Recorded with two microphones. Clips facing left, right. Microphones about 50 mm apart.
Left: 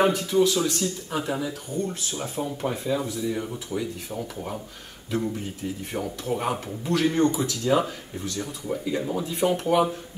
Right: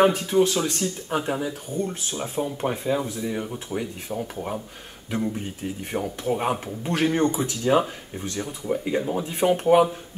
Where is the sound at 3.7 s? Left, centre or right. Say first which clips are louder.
Right 1 dB; centre.